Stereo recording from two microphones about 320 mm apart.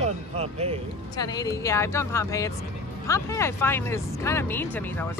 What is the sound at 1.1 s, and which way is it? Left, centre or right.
Speech, centre.